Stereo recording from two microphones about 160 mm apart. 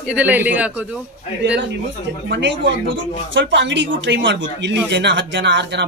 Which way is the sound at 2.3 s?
90° right.